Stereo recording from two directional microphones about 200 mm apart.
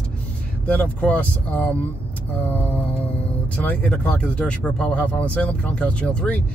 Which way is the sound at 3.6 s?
5° left (ahead or behind).